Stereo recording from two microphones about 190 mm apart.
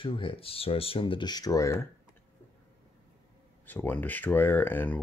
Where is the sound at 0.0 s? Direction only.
30° left (ahead or behind).